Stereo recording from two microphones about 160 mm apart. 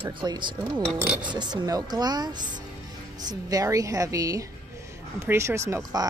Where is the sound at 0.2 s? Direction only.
30° right (ahead or behind).